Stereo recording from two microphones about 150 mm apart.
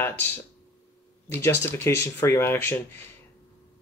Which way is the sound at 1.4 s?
15° left (ahead or behind).